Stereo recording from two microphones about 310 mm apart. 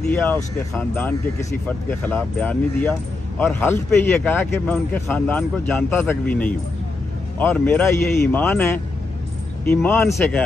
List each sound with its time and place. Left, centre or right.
0.1 s a man's voice: centre